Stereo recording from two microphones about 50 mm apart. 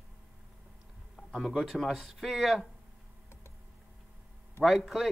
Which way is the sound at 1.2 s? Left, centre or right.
Left.